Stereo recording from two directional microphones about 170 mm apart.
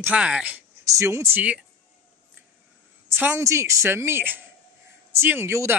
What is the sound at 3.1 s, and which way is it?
A woman's voice, 10° right (ahead or behind).